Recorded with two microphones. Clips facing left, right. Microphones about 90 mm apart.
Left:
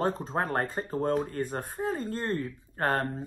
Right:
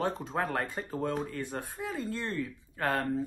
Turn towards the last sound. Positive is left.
turn(degrees=45)  # may be behind; listen again after turning